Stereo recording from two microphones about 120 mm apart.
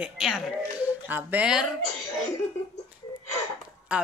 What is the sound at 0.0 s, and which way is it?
Speech, 5° right (ahead or behind).